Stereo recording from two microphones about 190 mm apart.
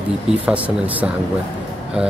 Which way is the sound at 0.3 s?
5° right (ahead or behind).